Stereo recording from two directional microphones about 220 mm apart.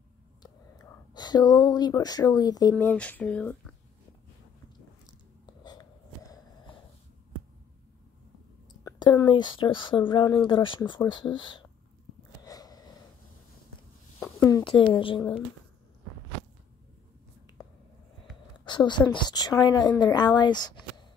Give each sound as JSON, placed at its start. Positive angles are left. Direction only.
{"t": 0.4, "sound": "whispering", "side_deg": 20}
{"t": 2.7, "sound": "speech", "side_deg": 5}
{"t": 5.5, "sound": "snort", "side_deg": 20}
{"t": 8.8, "sound": "a woman's voice", "side_deg": 20}
{"t": 12.4, "sound": "a sound", "side_deg": 15}
{"t": 14.5, "sound": "a woman's voice", "side_deg": 20}
{"t": 18.7, "sound": "a woman's voice", "side_deg": 20}